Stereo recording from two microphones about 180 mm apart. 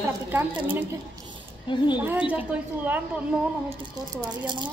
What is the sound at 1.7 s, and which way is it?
Speech, 25° left (ahead or behind).